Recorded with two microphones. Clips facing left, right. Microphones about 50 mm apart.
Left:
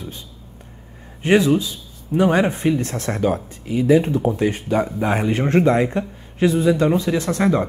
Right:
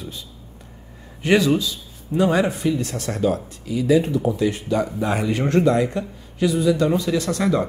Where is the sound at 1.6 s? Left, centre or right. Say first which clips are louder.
Even; left.